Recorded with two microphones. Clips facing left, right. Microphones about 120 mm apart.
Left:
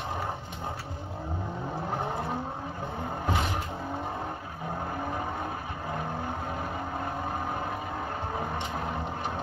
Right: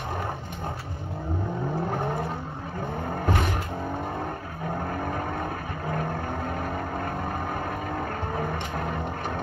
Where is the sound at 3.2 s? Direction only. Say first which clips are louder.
Right 3 dB; 55° right (ahead or behind).